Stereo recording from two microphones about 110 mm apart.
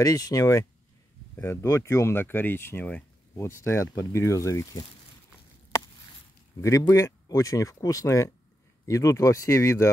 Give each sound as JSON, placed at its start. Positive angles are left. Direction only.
{"t": 0.0, "sound": "speech", "side_deg": 30}
{"t": 6.9, "sound": "speech", "side_deg": 30}